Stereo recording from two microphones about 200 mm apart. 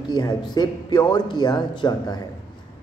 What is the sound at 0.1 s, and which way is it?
A man's voice, 20° left (ahead or behind).